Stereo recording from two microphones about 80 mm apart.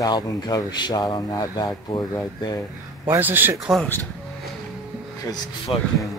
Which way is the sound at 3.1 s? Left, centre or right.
Right.